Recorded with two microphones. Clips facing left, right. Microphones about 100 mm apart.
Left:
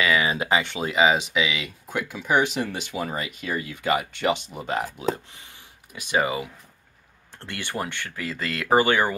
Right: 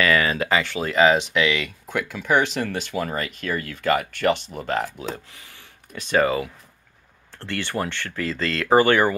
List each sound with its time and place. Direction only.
0.0 s speech: 15° left (ahead or behind)